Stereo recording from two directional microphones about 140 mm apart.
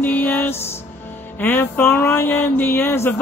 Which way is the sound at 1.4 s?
15° left (ahead or behind).